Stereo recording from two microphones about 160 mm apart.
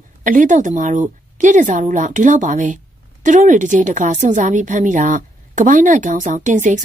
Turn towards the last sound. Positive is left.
turn(degrees=-50)  # may be behind; listen again after turning